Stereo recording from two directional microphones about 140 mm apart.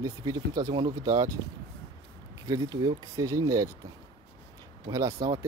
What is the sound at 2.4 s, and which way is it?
Speech, 25° right (ahead or behind).